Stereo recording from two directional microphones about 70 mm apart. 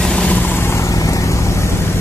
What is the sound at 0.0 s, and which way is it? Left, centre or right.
Vehicle, centre.